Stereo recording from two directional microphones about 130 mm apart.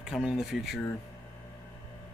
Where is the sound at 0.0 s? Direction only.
5° right (ahead or behind).